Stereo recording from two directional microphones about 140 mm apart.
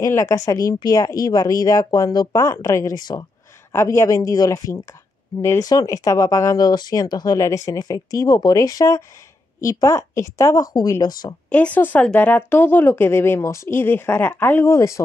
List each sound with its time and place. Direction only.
0.0 s speech: 20° left (ahead or behind)
3.7 s speech: 20° left (ahead or behind)
11.4 s speech: 10° left (ahead or behind)